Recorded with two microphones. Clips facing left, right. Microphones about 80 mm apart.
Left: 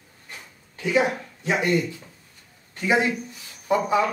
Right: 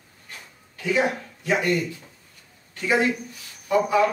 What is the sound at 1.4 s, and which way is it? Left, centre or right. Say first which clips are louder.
Speech: even; left.